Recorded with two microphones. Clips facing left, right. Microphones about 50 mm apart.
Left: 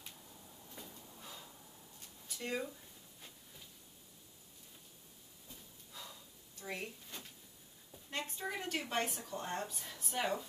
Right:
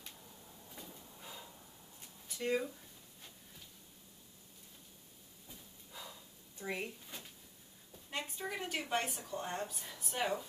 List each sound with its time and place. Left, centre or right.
0.7 s a sound: centre
2.2 s speech: centre
5.5 s hiss: centre
6.6 s speech: centre
8.1 s a woman's voice: centre